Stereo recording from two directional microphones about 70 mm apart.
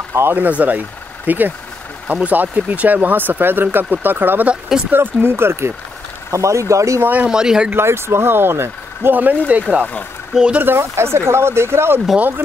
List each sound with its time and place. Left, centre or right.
0.1 s speech: right
0.5 s speech: right
6.3 s speech: right
7.2 s speech: centre
7.7 s speech: right; by 10.6 s centre
10.6 s speech: right
12.2 s speech: right